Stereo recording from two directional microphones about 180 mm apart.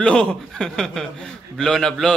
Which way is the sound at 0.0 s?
5° left (ahead or behind).